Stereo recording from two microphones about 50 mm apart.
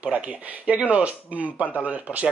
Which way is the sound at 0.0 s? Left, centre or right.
Right.